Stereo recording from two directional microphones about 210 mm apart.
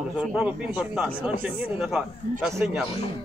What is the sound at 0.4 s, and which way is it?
Speech, centre (ahead or behind).